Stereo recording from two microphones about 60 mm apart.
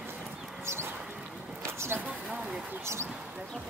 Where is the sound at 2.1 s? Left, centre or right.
Centre.